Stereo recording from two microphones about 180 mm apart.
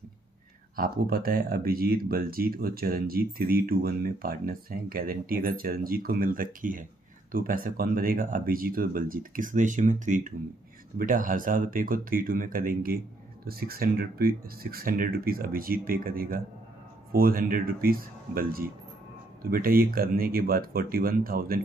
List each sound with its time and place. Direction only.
0.7 s speech: 55° right (ahead or behind)